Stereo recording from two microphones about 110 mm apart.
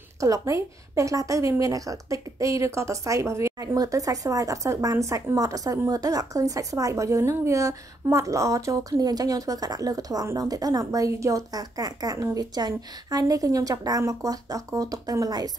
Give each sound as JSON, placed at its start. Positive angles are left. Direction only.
{"t": 0.2, "sound": "a woman's voice", "side_deg": -30}